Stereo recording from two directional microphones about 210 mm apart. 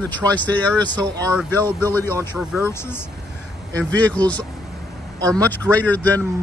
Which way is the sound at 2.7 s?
10° left (ahead or behind).